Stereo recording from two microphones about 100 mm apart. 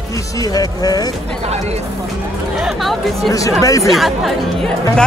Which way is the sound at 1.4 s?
90° right.